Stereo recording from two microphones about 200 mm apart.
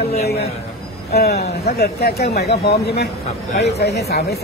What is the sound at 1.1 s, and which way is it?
A man's voice, 50° left (ahead or behind).